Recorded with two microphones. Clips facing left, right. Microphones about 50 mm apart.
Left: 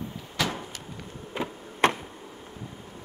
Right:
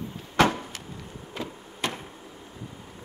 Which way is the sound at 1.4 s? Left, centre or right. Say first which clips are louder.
Left 3 dB; left.